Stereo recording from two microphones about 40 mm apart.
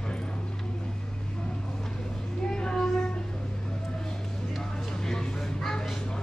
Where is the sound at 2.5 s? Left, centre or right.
Centre.